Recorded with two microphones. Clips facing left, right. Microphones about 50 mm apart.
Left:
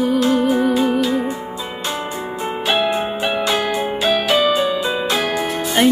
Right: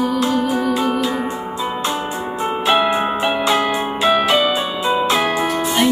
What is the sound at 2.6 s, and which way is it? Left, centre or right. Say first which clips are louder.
Music: right 2 dB; centre.